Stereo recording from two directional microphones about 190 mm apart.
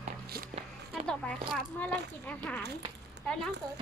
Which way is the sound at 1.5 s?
5° left (ahead or behind).